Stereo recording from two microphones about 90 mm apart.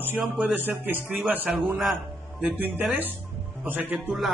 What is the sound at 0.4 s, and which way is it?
A man's voice, 20° right (ahead or behind).